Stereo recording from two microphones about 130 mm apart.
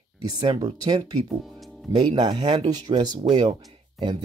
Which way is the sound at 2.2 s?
35° right (ahead or behind).